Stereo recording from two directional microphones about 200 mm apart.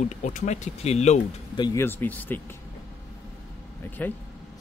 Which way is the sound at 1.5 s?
15° left (ahead or behind).